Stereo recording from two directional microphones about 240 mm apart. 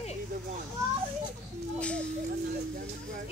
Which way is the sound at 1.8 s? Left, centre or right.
Centre.